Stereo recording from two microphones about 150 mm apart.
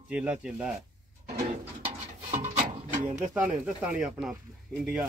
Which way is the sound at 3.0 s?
60° right (ahead or behind).